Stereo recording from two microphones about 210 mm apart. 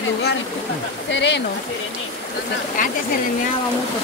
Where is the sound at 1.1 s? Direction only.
60° left (ahead or behind).